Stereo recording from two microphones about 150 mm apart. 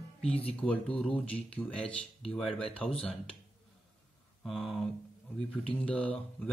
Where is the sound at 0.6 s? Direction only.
5° left (ahead or behind).